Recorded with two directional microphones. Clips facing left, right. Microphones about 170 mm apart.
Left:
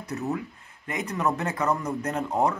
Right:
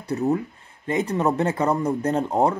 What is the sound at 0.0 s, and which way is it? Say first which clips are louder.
Speech: right 7 dB; 30° right (ahead or behind).